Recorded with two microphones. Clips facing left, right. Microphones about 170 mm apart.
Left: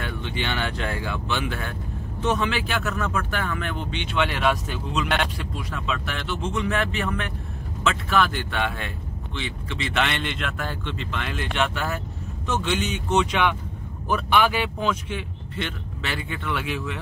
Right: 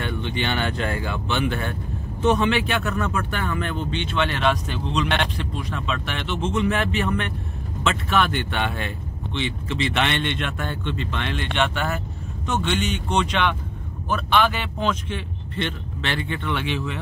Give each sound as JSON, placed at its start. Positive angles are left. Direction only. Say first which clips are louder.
{"t": 0.0, "sound": "speech", "louder": "right 3 dB", "side_deg": 5}
{"t": 3.9, "sound": "speech", "louder": "left 1 dB", "side_deg": 10}
{"t": 6.2, "sound": "speech", "louder": "right 4 dB", "side_deg": -20}
{"t": 6.5, "sound": "speech", "louder": "right 3 dB", "side_deg": 0}